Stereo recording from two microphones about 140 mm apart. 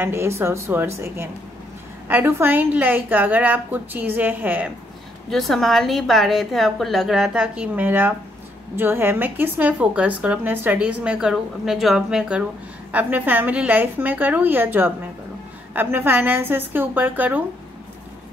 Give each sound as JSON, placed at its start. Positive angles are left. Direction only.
{"t": 0.0, "sound": "a woman's voice", "side_deg": -20}
{"t": 5.3, "sound": "a woman's voice", "side_deg": 0}